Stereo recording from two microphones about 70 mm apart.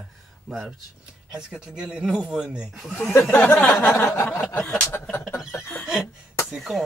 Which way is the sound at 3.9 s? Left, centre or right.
Left.